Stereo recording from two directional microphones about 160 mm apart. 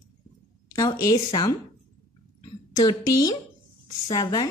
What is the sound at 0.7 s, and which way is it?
Speech, 20° left (ahead or behind).